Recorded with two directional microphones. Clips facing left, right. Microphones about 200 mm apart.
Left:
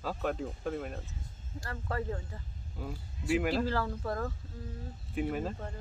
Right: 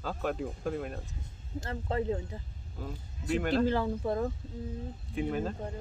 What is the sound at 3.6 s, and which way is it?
Speech, 20° right (ahead or behind).